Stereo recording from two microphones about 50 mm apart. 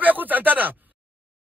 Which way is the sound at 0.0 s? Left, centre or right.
Right.